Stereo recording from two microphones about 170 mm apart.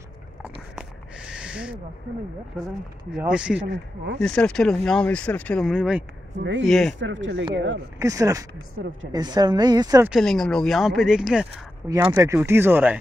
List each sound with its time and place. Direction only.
0.4 s a sound: 5° right (ahead or behind)
3.1 s speech: 5° right (ahead or behind)
3.7 s speech: 90° right
4.2 s speech: 5° left (ahead or behind)
5.7 s speech: 5° right (ahead or behind)
6.3 s speech: 90° right
6.6 s speech: centre (ahead or behind)
7.0 s speech: 90° right
8.0 s speech: 20° right (ahead or behind)
10.0 s speech: centre (ahead or behind)